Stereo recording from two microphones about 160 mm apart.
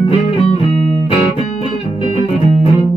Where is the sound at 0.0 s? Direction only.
40° left (ahead or behind).